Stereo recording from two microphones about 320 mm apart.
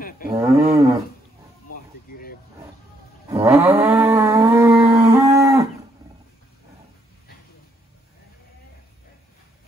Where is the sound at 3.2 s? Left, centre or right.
Centre.